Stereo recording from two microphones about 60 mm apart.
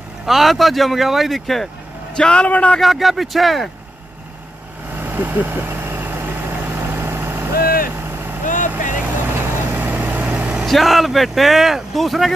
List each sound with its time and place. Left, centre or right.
0.3 s speech: centre
2.1 s a man's voice: centre
2.8 s speech: centre
4.9 s vehicle: right; by 10.7 s centre
10.7 s speech: centre